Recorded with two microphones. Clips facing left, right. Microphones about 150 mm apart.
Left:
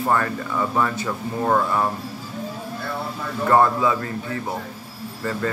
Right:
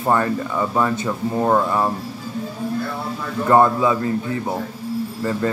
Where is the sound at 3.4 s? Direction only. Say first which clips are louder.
Right 3 dB; 20° right (ahead or behind).